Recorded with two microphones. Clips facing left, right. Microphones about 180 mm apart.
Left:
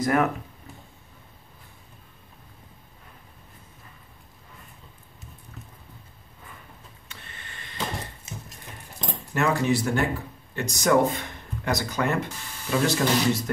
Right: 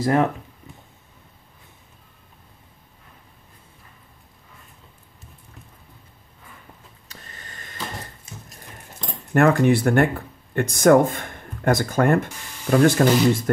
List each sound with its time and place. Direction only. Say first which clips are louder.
0.0 s speech: right 3 dB; 30° right (ahead or behind)
7.1 s a sound: right 2 dB; 40° right (ahead or behind)
9.3 s speech: right 7 dB; 55° right (ahead or behind)